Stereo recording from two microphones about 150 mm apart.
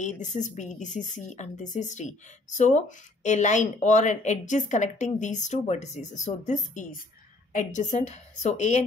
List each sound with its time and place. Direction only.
0.0 s a woman's voice: 55° left (ahead or behind)